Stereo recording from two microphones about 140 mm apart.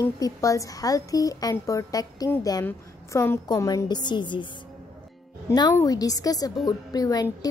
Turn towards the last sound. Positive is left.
turn(degrees=25)  # may be behind; listen again after turning